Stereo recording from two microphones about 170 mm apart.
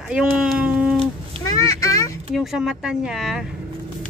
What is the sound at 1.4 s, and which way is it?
Speech, 20° left (ahead or behind).